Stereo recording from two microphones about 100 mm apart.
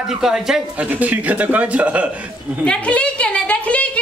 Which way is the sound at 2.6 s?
10° left (ahead or behind).